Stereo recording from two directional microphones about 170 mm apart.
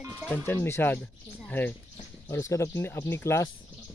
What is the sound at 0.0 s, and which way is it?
Music, 10° right (ahead or behind).